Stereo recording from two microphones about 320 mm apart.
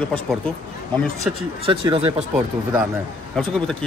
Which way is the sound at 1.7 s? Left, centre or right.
Centre.